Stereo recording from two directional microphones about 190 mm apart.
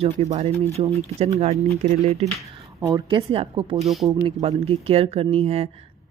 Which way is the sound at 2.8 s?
20° right (ahead or behind).